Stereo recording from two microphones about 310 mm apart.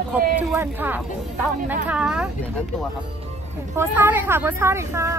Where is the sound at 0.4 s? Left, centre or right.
Centre.